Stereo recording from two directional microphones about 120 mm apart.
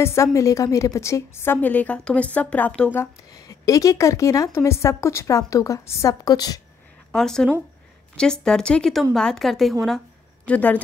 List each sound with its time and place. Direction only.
0.0 s a woman's voice: 25° left (ahead or behind)
3.0 s a woman's voice: 30° left (ahead or behind)
7.1 s a woman's voice: 5° left (ahead or behind)
9.8 s a sound: 5° left (ahead or behind)